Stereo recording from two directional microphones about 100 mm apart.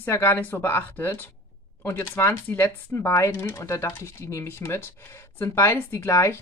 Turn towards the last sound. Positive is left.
turn(degrees=25)  # may be behind; listen again after turning